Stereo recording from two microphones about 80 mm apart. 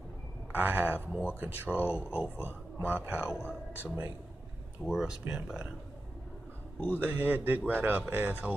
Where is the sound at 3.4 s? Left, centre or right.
Left.